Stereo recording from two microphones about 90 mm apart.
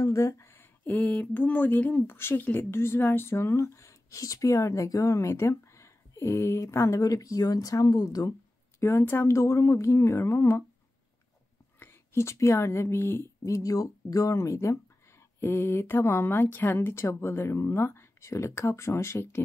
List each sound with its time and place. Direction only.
0.0 s a sound: 35° left (ahead or behind); by 1.1 s 15° left (ahead or behind)
1.2 s speech: 20° left (ahead or behind); by 8.3 s 45° left (ahead or behind)
8.7 s speech: 30° left (ahead or behind)
11.8 s speech: 30° left (ahead or behind)
13.5 s speech: 40° left (ahead or behind)